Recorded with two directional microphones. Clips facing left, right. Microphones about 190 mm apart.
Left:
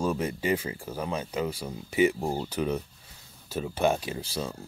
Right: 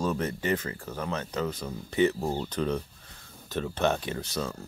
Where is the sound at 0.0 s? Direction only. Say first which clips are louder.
Left 1 dB; 10° left (ahead or behind).